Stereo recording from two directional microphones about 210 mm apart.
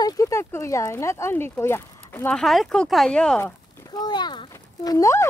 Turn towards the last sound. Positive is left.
turn(degrees=15)  # may be behind; listen again after turning